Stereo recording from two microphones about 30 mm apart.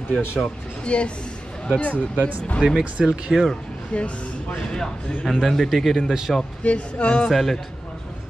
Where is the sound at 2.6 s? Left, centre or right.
Right.